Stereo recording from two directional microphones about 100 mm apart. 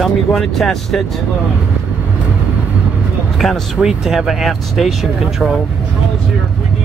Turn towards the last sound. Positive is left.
turn(degrees=-5)  # may be behind; listen again after turning